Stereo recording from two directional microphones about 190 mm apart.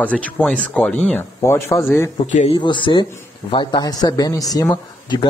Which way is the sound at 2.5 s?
25° left (ahead or behind).